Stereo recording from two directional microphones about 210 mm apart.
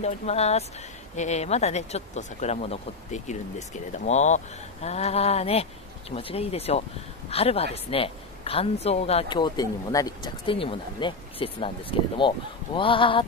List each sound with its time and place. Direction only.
0.0 s a woman's voice: 30° left (ahead or behind)